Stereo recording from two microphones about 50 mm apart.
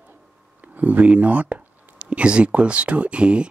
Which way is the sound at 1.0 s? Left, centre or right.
Right.